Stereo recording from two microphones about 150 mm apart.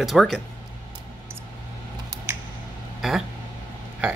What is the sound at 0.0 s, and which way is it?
Speech, centre (ahead or behind).